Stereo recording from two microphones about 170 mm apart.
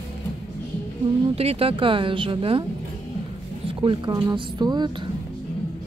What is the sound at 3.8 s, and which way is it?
A woman's voice, 25° right (ahead or behind).